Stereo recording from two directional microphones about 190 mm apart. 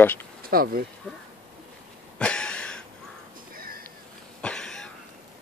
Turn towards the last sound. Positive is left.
turn(degrees=5)  # may be behind; listen again after turning